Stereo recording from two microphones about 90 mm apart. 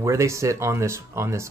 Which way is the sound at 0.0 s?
35° right (ahead or behind).